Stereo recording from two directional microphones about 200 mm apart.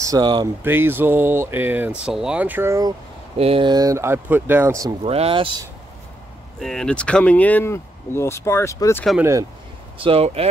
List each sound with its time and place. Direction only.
0.0 s speech: 20° right (ahead or behind)
0.7 s speech: 10° right (ahead or behind)
3.3 s speech: 30° right (ahead or behind)
5.0 s speech: 30° right (ahead or behind)
6.6 s speech: 5° left (ahead or behind)
9.2 s speech: 15° right (ahead or behind)
9.9 s speech: 25° right (ahead or behind)